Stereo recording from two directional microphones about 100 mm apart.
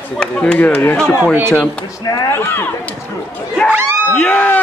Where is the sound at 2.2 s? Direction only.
25° left (ahead or behind).